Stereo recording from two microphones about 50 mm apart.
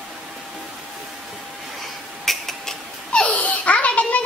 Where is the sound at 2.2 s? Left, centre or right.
Centre.